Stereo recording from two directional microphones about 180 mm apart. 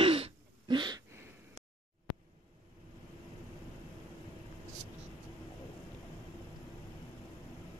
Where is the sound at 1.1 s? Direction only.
15° right (ahead or behind).